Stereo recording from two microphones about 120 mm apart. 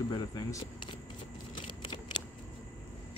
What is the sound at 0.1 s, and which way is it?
Speech, 35° left (ahead or behind).